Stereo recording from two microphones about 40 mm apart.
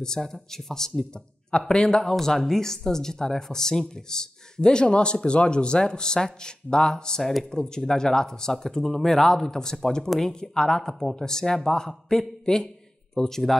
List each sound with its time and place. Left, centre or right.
0.0 s a man's voice: centre